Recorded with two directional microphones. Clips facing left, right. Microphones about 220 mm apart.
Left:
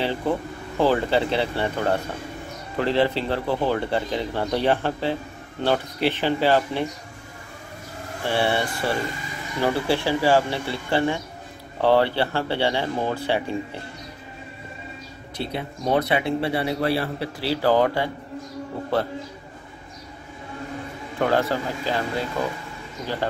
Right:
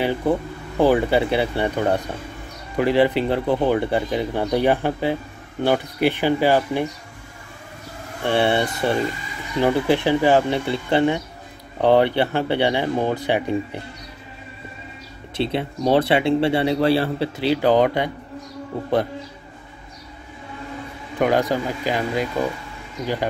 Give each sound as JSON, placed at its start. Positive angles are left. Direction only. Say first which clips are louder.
{"t": 0.0, "sound": "speech", "louder": "right 4 dB", "side_deg": -15}
{"t": 8.3, "sound": "speech", "louder": "right 4 dB", "side_deg": -20}
{"t": 15.3, "sound": "speech", "louder": "right 6 dB", "side_deg": -25}
{"t": 21.2, "sound": "speech", "louder": "right 3 dB", "side_deg": -15}